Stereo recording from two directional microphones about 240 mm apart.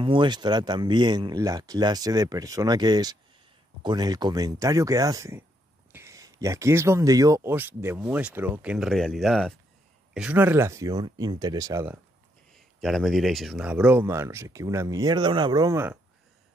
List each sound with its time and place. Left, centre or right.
0.0 s speech: right
12.8 s speech: centre